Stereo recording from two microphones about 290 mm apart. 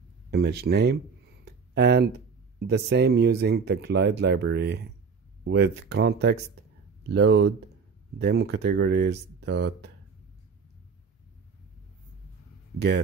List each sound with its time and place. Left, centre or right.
0.3 s speech: right
12.7 s speech: right